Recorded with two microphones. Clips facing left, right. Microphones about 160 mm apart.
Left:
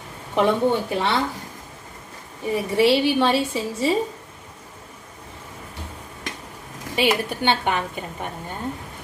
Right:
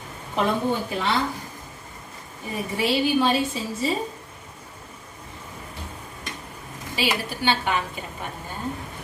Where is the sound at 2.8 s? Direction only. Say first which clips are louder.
Left 4 dB; 75° left (ahead or behind).